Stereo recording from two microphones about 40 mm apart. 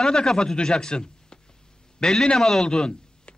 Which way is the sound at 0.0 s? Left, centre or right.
Centre.